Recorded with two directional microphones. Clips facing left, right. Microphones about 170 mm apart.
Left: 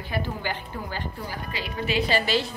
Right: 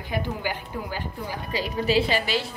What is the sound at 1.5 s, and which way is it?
Speech, 40° right (ahead or behind).